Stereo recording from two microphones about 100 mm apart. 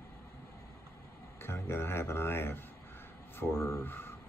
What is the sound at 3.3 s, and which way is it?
Speech, 25° left (ahead or behind).